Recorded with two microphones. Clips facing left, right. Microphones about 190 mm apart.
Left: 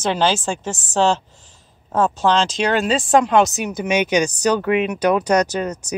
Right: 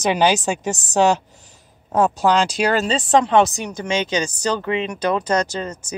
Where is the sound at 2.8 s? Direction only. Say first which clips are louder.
Left 1 dB; 5° left (ahead or behind).